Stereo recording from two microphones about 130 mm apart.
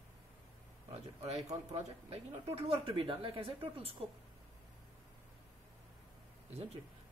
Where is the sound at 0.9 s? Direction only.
55° right (ahead or behind).